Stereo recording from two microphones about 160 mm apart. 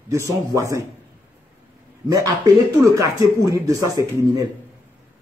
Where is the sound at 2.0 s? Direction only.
20° right (ahead or behind).